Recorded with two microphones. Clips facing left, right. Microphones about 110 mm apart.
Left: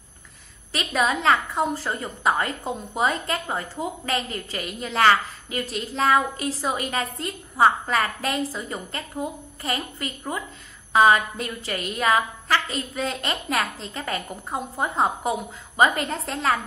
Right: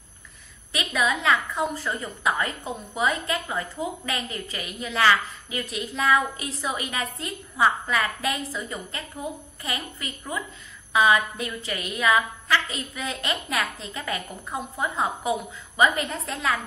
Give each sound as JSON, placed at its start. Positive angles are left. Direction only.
{"t": 0.7, "sound": "a woman's voice", "side_deg": 35}